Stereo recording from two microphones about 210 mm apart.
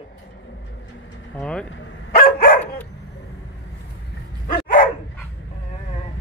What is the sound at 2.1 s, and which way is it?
Dog, 45° left (ahead or behind).